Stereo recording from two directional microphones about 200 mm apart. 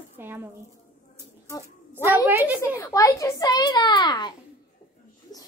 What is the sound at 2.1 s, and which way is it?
Speech, 10° right (ahead or behind).